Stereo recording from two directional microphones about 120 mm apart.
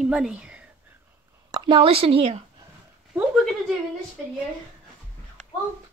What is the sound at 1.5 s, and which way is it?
Speech, 45° right (ahead or behind).